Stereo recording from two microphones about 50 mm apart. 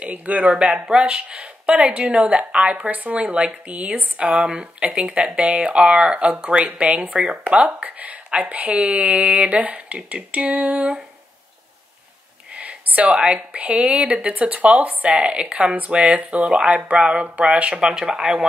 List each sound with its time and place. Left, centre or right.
0.0 s speech: right
8.7 s speech: right
12.5 s speech: right